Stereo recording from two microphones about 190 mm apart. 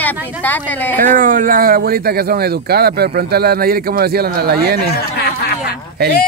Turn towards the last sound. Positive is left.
turn(degrees=-55)  # may be behind; listen again after turning